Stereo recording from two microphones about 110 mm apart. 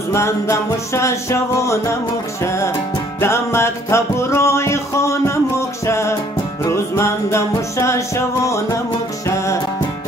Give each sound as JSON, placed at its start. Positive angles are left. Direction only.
{"t": 0.1, "sound": "music", "side_deg": 25}
{"t": 3.2, "sound": "music", "side_deg": 25}